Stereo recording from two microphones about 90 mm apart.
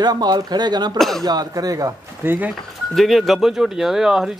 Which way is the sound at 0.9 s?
5° left (ahead or behind).